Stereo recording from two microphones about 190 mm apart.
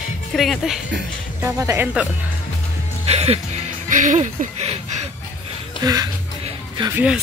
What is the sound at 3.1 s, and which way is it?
Speech, 35° right (ahead or behind).